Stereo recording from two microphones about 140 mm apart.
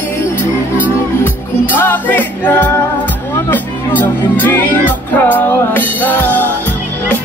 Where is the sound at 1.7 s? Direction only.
15° left (ahead or behind).